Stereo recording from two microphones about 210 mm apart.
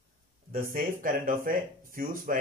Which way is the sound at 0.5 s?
40° right (ahead or behind).